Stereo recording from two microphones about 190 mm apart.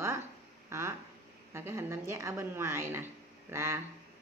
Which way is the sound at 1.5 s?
15° right (ahead or behind).